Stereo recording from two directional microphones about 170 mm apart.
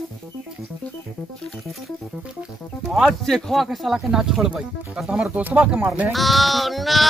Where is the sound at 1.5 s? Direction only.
Centre (ahead or behind).